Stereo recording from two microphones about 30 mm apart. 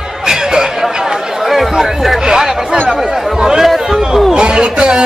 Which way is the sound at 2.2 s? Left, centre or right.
Centre.